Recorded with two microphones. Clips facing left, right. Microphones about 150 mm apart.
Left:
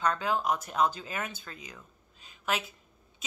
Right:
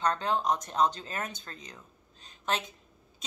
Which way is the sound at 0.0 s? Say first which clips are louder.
Even; 30° right (ahead or behind).